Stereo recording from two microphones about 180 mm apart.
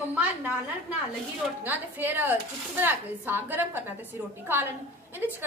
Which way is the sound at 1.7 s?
10° right (ahead or behind).